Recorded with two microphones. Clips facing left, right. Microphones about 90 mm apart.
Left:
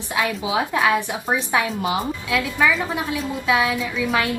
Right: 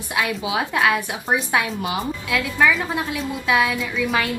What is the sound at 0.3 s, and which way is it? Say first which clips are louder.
A woman's voice: left 1 dB; 25° left (ahead or behind).